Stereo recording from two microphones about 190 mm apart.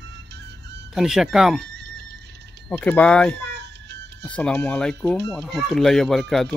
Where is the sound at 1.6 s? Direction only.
65° right (ahead or behind).